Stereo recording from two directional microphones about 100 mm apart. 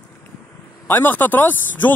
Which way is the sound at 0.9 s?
20° left (ahead or behind).